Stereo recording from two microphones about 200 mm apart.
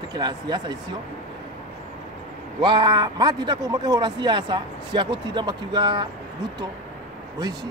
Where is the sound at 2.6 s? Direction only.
25° right (ahead or behind).